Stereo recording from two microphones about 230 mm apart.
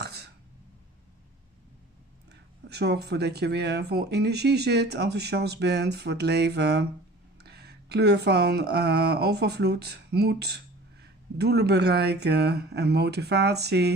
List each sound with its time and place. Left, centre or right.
0.0 s throat clearing: right
2.7 s speech: right